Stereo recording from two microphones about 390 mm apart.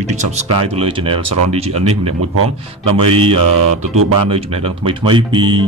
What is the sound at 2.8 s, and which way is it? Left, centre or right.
Speech, centre.